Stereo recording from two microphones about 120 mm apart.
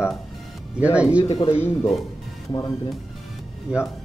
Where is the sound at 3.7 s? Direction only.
10° right (ahead or behind).